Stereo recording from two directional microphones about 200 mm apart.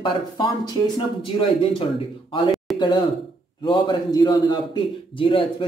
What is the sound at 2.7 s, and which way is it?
A man's voice, 25° left (ahead or behind).